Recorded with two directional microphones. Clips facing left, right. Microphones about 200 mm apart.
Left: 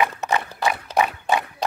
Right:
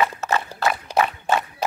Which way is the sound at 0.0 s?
15° left (ahead or behind).